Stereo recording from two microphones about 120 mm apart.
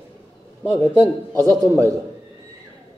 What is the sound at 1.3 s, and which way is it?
Speech, 30° right (ahead or behind).